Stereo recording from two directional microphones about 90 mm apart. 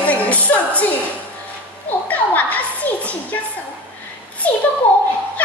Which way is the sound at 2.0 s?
15° left (ahead or behind).